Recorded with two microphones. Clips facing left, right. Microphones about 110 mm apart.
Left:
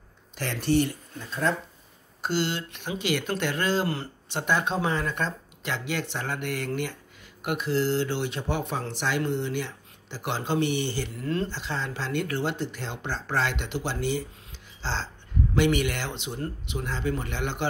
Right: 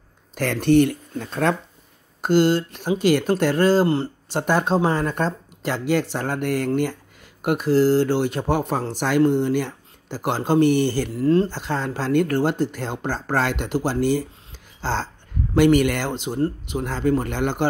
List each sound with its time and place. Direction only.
0.3 s speech: 55° right (ahead or behind)
2.2 s speech: 45° right (ahead or behind); by 4.4 s 30° right (ahead or behind)
4.4 s speech: 40° right (ahead or behind)